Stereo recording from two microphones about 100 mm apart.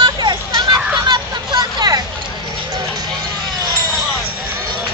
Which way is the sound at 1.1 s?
45° right (ahead or behind).